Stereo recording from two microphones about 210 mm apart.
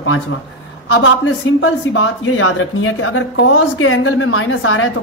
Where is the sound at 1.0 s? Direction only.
70° left (ahead or behind).